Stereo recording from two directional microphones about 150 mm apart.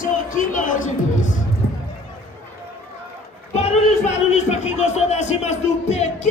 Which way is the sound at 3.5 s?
45° left (ahead or behind).